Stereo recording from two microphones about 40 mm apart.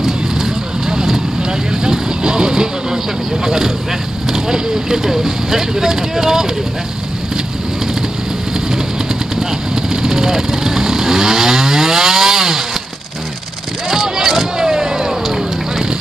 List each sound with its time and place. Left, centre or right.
0.8 s vehicle: centre
3.4 s speech: centre
4.3 s vehicle: centre
9.8 s vehicle: centre
13.8 s vehicle: centre